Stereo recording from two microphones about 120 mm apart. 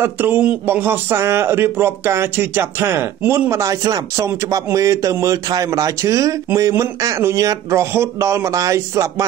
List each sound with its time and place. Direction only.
0.0 s speech: 15° right (ahead or behind)